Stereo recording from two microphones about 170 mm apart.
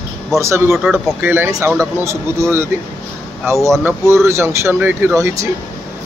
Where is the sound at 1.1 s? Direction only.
10° right (ahead or behind).